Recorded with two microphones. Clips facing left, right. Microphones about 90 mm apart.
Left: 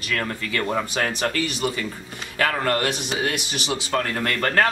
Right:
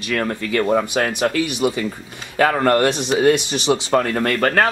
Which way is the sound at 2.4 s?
30° right (ahead or behind).